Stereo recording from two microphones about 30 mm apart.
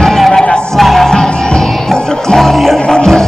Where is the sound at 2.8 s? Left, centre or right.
Left.